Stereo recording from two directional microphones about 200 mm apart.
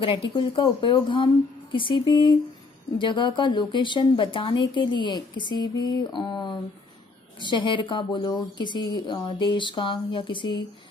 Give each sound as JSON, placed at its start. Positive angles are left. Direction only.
{"t": 0.0, "sound": "a woman's voice", "side_deg": 25}